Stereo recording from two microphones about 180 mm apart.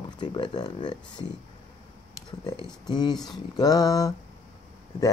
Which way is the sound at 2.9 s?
25° left (ahead or behind).